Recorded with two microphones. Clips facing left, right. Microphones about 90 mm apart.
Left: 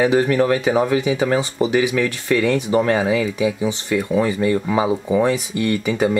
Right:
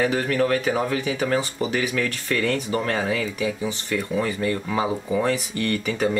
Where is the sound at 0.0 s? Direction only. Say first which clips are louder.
Left 6 dB; 20° left (ahead or behind).